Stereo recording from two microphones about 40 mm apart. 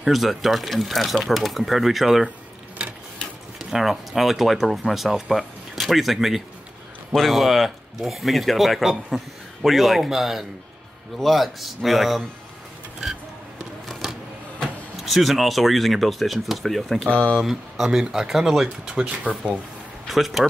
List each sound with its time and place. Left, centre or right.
0.0 s speech: centre
3.5 s speech: centre
15.0 s speech: centre
17.1 s speech: left
17.4 s speech: centre
19.0 s speech: right
20.1 s speech: centre